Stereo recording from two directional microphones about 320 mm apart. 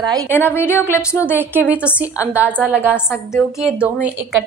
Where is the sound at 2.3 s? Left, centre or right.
Centre.